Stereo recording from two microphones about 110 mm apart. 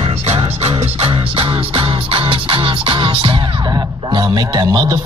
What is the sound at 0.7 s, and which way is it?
Music, 60° right (ahead or behind).